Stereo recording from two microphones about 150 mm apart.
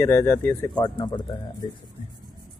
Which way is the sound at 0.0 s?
15° left (ahead or behind).